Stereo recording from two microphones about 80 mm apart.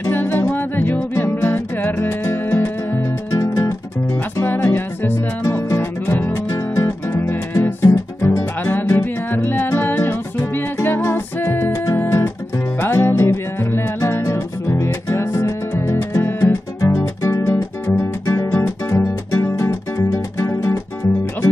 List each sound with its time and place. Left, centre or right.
0.1 s music: left
3.3 s music: left
16.9 s music: left